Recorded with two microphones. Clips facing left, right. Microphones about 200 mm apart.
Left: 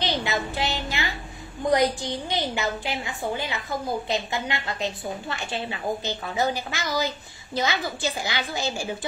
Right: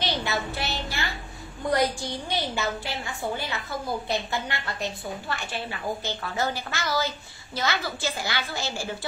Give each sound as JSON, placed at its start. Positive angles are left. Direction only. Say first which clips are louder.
{"t": 0.0, "sound": "a woman's voice", "louder": "left 2 dB", "side_deg": 20}